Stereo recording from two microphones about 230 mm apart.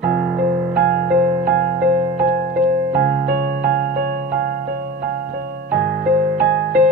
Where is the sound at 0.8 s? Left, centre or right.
Right.